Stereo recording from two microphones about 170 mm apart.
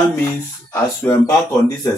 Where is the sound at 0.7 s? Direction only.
20° left (ahead or behind).